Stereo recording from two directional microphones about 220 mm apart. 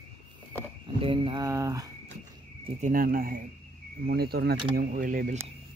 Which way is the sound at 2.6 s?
35° right (ahead or behind).